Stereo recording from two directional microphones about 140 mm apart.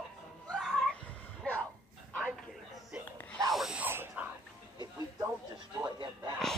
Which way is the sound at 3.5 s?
5° right (ahead or behind).